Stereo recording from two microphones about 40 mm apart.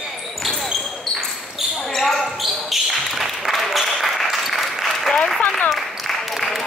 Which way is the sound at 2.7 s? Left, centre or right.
Centre.